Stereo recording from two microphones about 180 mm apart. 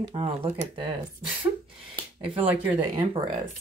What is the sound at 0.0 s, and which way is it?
Speech, 30° right (ahead or behind).